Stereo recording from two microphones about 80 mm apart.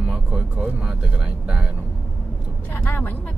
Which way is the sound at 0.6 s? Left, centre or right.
Centre.